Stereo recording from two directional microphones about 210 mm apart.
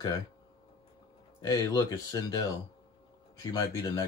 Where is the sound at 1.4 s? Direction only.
15° left (ahead or behind).